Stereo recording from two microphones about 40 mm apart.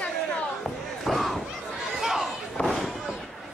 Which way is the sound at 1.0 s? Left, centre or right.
Centre.